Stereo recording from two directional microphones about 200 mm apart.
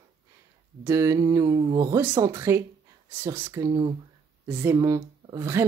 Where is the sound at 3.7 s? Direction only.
25° right (ahead or behind).